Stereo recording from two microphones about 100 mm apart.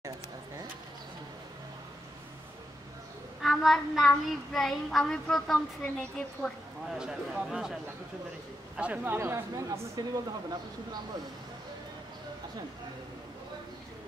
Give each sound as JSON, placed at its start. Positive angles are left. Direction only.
{"t": 3.4, "sound": "child singing", "side_deg": 0}
{"t": 7.0, "sound": "child singing", "side_deg": -5}
{"t": 8.7, "sound": "speech", "side_deg": -15}